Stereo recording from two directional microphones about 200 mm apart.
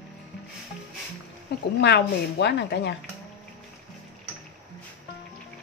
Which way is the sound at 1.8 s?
60° left (ahead or behind).